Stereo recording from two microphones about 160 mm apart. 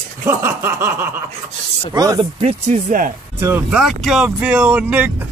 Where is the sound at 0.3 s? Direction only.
15° right (ahead or behind).